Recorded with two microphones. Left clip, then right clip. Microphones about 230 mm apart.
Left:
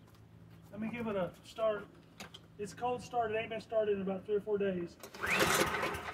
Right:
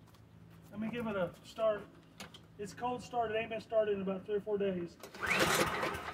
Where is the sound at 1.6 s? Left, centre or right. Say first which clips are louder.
Right 1 dB; centre.